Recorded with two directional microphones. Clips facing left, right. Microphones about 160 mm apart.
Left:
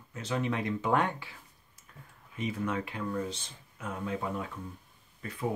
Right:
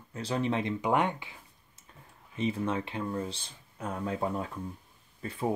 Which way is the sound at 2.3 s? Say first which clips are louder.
Right 2 dB; 25° right (ahead or behind).